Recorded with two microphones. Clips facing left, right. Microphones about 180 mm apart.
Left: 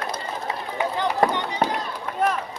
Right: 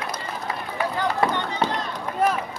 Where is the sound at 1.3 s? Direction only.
15° left (ahead or behind).